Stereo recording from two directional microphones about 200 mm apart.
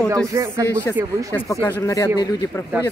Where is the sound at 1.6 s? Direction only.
15° left (ahead or behind).